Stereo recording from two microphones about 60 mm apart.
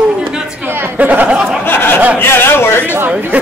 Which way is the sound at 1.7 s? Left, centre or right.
Left.